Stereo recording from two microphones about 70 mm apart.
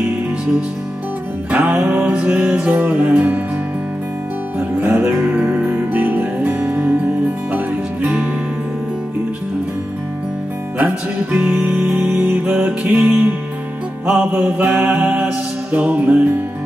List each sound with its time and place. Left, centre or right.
1.5 s music: right
4.8 s music: right
11.3 s music: centre